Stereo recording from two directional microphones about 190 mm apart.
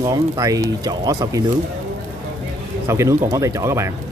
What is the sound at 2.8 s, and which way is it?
Speech, 15° right (ahead or behind).